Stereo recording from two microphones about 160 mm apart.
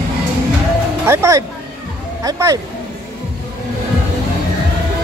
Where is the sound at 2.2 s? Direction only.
20° right (ahead or behind).